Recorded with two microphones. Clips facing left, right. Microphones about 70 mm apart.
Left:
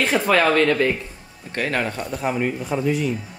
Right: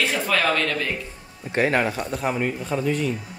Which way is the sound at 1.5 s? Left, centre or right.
Centre.